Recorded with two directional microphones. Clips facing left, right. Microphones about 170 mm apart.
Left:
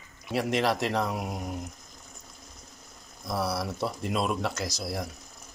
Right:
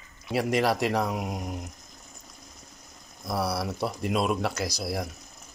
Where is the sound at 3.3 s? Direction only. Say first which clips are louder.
Right 1 dB; 5° right (ahead or behind).